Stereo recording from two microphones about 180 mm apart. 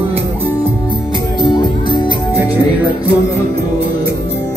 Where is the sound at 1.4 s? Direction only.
25° left (ahead or behind).